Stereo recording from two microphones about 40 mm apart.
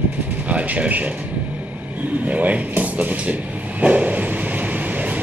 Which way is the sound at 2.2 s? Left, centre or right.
Right.